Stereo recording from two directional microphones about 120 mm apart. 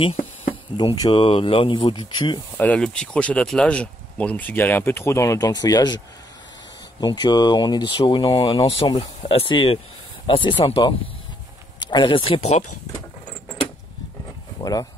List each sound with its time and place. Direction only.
0.0 s insect: 55° left (ahead or behind)
0.7 s speech: 35° left (ahead or behind)
1.2 s speech: 50° left (ahead or behind)
2.5 s speech: 10° left (ahead or behind); by 12.4 s 45° left (ahead or behind)
14.6 s speech: 30° left (ahead or behind)